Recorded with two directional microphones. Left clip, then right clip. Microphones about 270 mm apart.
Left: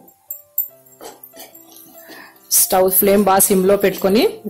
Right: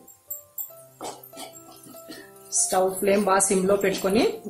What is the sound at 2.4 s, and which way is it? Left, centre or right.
Music, left.